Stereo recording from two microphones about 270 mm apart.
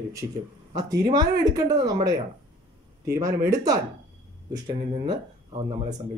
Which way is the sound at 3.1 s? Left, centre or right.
Centre.